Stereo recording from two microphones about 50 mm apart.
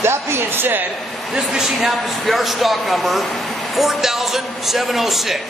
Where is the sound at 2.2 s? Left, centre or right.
Centre.